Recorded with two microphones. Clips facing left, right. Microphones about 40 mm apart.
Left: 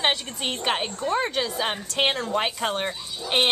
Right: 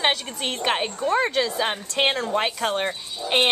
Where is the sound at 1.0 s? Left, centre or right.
Centre.